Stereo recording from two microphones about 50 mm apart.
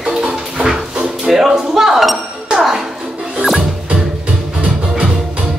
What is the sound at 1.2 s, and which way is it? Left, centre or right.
Dishes, centre.